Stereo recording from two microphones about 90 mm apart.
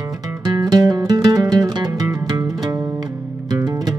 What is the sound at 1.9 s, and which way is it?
Music, 40° right (ahead or behind).